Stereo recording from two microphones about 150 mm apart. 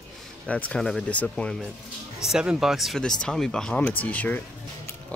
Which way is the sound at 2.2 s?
5° right (ahead or behind).